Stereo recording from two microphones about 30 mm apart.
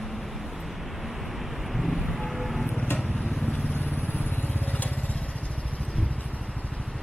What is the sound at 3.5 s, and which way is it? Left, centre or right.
Vehicle, left.